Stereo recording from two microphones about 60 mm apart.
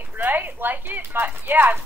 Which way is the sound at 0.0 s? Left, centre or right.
Right.